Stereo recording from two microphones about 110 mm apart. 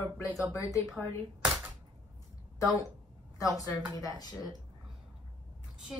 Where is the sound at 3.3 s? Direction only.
30° left (ahead or behind).